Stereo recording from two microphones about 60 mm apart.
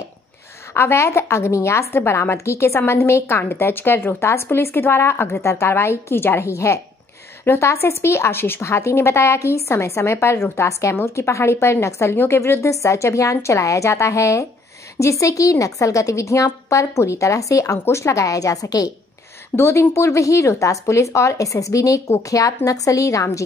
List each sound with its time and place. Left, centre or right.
0.7 s a woman's voice: left
17.8 s a woman's voice: left
19.5 s a woman's voice: left